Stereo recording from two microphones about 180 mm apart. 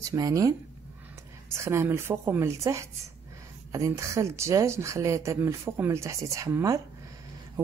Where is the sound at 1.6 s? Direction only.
15° right (ahead or behind).